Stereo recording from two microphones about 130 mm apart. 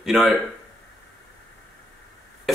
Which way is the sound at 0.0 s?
Centre (ahead or behind).